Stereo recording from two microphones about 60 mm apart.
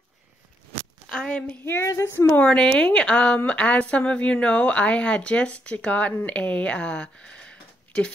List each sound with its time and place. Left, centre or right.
1.0 s speech: centre
1.6 s a sound: left
2.5 s a woman's voice: centre